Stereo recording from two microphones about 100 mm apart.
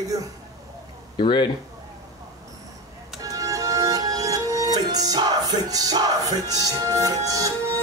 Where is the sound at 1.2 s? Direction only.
50° left (ahead or behind).